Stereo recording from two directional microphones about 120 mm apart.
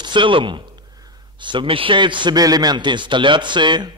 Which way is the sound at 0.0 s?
40° right (ahead or behind).